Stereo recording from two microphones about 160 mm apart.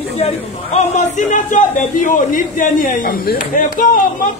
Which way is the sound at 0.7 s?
50° left (ahead or behind).